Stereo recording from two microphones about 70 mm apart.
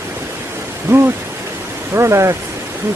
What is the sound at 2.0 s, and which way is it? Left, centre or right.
Speech, right.